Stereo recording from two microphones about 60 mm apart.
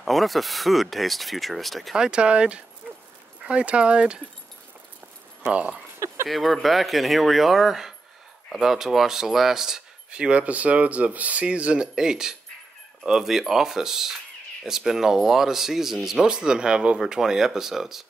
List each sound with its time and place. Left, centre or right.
0.0 s speech: centre
2.0 s speech: centre
5.4 s speech: right
6.2 s speech: centre